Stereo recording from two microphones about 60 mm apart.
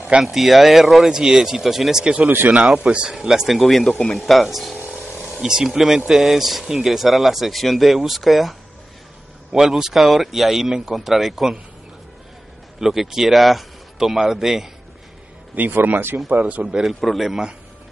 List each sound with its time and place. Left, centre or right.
0.2 s speech: centre
2.2 s speech: right
2.5 s speech: centre
12.8 s speech: centre
15.5 s speech: right
16.7 s speech: centre